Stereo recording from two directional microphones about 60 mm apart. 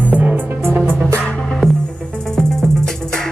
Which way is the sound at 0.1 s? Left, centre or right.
Right.